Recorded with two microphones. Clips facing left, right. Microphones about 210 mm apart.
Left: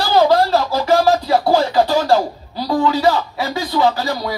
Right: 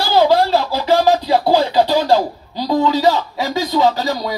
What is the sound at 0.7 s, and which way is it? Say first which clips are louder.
Music: even; 15° right (ahead or behind).